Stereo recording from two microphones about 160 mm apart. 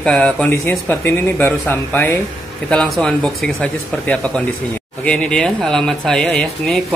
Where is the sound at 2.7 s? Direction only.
Centre (ahead or behind).